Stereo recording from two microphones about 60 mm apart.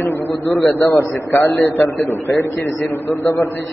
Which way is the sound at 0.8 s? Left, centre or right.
Left.